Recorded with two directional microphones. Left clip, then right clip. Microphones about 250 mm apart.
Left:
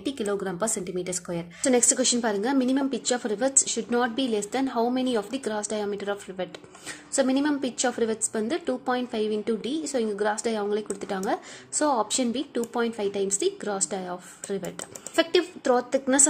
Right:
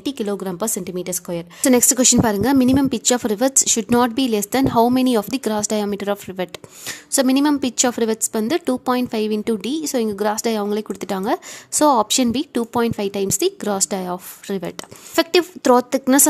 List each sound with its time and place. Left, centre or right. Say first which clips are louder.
0.0 s a woman's voice: right 4 dB; right
15.1 s speech: right 6 dB; right